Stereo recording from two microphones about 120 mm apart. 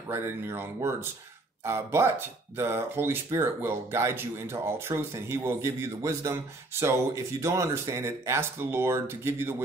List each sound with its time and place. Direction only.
0.1 s speech: 20° right (ahead or behind)